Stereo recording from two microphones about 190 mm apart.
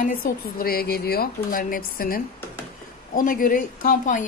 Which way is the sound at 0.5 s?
50° left (ahead or behind).